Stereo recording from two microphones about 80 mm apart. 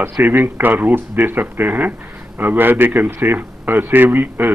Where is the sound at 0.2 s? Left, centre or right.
Right.